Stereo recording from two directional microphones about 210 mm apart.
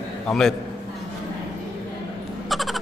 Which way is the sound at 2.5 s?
Centre (ahead or behind).